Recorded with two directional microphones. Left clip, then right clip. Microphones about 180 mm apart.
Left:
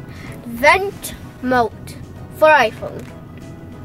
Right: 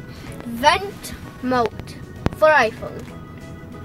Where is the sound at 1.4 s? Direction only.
35° left (ahead or behind).